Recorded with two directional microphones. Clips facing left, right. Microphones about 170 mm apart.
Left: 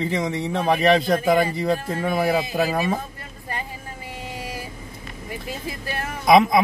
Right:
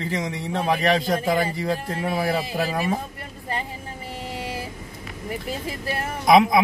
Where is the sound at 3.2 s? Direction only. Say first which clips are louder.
Right 2 dB; 25° right (ahead or behind).